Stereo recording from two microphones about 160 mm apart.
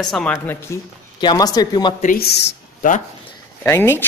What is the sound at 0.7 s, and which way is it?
Speech, 15° left (ahead or behind).